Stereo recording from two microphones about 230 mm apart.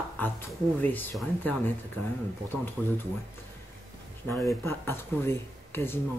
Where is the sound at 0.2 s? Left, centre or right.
Centre.